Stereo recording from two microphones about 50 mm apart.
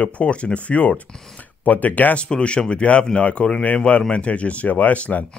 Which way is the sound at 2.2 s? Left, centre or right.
Left.